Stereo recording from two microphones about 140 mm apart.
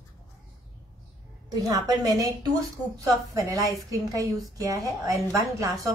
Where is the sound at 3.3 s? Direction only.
25° right (ahead or behind).